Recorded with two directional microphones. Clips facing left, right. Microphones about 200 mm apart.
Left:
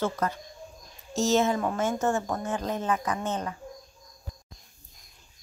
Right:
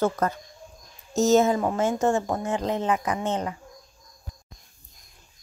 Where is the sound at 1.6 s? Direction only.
30° right (ahead or behind).